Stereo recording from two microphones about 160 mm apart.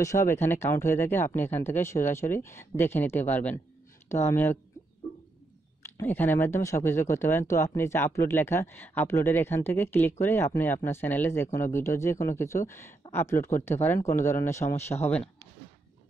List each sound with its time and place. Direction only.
0.0 s speech: 20° left (ahead or behind)
5.8 s speech: 15° left (ahead or behind)